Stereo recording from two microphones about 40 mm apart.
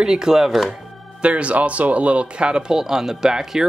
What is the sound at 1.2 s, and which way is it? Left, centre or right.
Speech, right.